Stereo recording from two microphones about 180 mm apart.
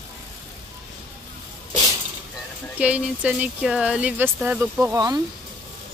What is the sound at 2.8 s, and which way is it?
Speech, 5° right (ahead or behind).